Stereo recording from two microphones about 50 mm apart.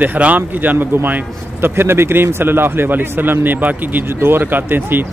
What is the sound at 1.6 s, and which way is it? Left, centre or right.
Speech, right.